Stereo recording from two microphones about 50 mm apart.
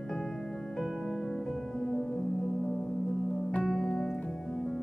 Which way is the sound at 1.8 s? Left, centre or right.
Centre.